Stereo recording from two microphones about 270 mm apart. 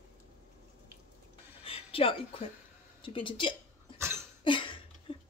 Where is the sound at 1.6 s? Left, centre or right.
Left.